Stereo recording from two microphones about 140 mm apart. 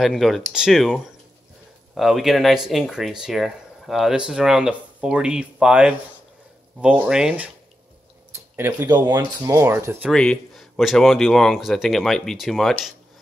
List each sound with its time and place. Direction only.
0.0 s speech: centre (ahead or behind)
8.5 s speech: 15° right (ahead or behind)
8.8 s speech: 30° right (ahead or behind)
10.1 s speech: 5° left (ahead or behind)